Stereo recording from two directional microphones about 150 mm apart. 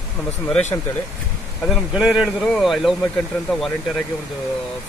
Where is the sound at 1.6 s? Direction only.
Centre (ahead or behind).